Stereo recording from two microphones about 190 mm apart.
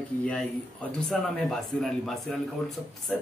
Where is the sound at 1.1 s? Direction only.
Centre (ahead or behind).